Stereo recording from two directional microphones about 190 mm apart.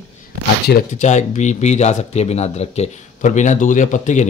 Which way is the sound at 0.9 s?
40° left (ahead or behind).